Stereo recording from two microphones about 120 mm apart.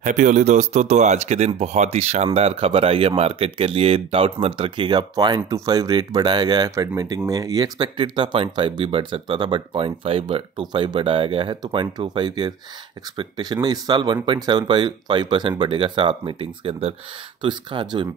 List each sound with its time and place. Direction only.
0.0 s speech: 90° right; by 7.9 s 30° right (ahead or behind)
8.0 s speech: 45° right (ahead or behind)